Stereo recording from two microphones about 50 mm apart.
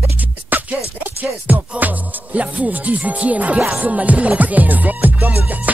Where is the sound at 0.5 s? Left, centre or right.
Right.